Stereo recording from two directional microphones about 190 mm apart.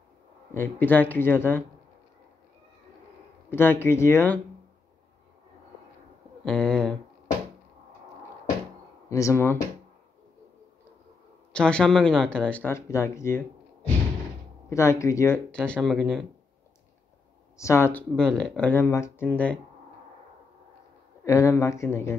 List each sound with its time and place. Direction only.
0.6 s speech: 10° left (ahead or behind)
3.4 s speech: 10° left (ahead or behind)
6.4 s speech: 5° left (ahead or behind)
9.1 s speech: 15° left (ahead or behind)
11.5 s speech: 5° left (ahead or behind)
14.7 s speech: 15° left (ahead or behind)
17.6 s speech: 15° left (ahead or behind)
21.2 s speech: 15° left (ahead or behind)